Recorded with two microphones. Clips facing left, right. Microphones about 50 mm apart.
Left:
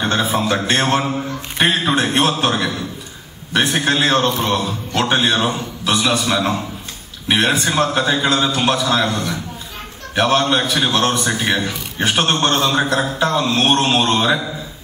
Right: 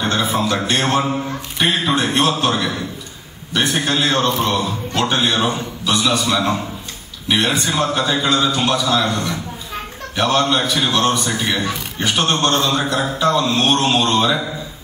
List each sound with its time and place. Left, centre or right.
0.2 s a man's voice: left
1.6 s a man's voice: left
3.8 s a man's voice: left
5.2 s a man's voice: left
5.9 s a man's voice: left
7.9 s a man's voice: left